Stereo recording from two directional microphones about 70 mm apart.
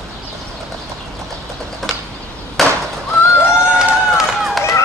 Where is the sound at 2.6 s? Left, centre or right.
Centre.